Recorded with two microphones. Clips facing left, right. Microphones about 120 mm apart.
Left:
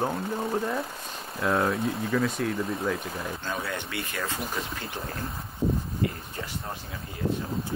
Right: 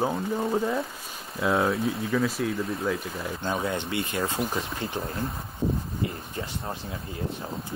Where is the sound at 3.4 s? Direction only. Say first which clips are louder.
Right 8 dB; 25° right (ahead or behind).